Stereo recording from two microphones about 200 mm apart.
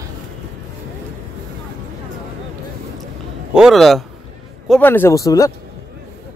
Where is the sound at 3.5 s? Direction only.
Centre (ahead or behind); by 5.5 s 15° left (ahead or behind).